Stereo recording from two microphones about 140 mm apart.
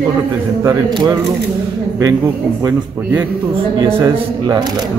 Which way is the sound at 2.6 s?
15° right (ahead or behind).